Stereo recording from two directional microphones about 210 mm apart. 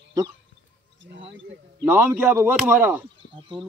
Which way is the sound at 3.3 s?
25° right (ahead or behind).